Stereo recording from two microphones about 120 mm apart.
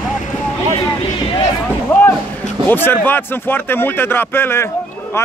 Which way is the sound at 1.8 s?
20° left (ahead or behind).